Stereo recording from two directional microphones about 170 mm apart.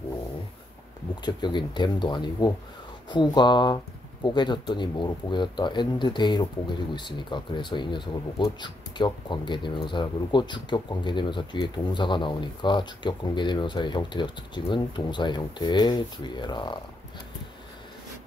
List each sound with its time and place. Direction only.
1.2 s speech: 25° left (ahead or behind)